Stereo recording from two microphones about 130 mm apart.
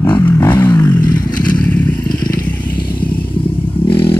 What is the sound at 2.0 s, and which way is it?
Vehicle, 90° left.